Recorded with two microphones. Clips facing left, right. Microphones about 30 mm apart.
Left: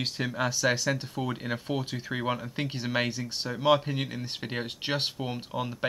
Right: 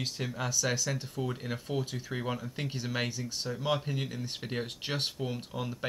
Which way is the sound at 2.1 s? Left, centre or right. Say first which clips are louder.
Left 4 dB; left.